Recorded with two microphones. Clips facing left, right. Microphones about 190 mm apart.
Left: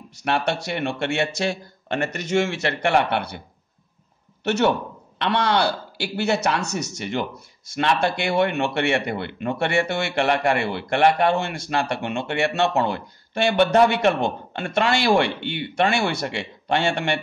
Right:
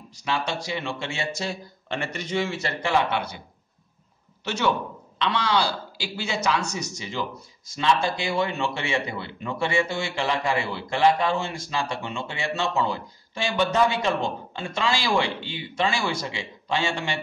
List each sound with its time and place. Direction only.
0.2 s speech: 65° left (ahead or behind)
1.9 s speech: 45° left (ahead or behind)
2.2 s speech: 75° left (ahead or behind)
4.5 s speech: 60° left (ahead or behind)